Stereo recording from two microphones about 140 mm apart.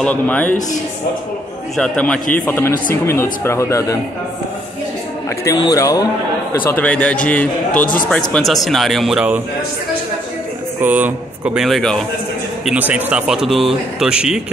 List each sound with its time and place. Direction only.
0.0 s a man's voice: 10° left (ahead or behind)
1.8 s a man's voice: 10° left (ahead or behind)
5.6 s speech: 25° left (ahead or behind)
6.6 s a man's voice: 10° left (ahead or behind)
10.8 s speech: 15° right (ahead or behind)
12.6 s speech: 10° right (ahead or behind)